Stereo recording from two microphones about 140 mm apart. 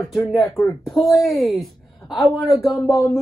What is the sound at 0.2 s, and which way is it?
Speech, 20° left (ahead or behind).